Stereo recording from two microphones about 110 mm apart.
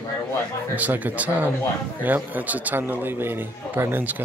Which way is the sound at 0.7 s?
15° right (ahead or behind).